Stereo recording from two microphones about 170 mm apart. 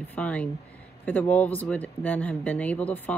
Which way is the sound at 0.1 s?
10° left (ahead or behind).